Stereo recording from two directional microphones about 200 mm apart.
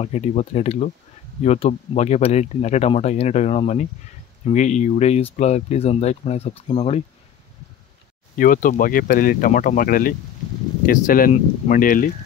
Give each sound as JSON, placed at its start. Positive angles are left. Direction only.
{"t": 0.0, "sound": "speech", "side_deg": 30}
{"t": 8.4, "sound": "speech", "side_deg": 40}